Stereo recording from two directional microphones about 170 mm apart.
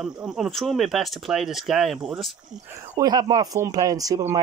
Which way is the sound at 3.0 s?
25° right (ahead or behind).